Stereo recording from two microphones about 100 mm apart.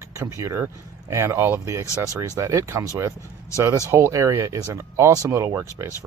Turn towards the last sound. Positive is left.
turn(degrees=-30)  # may be behind; listen again after turning